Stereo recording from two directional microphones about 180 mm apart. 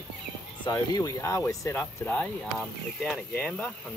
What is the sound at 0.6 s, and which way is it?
Speech, 20° left (ahead or behind).